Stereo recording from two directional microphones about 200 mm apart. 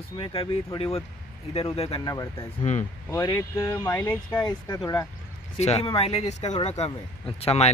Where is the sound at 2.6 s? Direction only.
35° left (ahead or behind).